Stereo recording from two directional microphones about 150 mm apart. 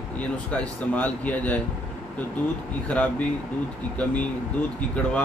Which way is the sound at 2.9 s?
10° left (ahead or behind).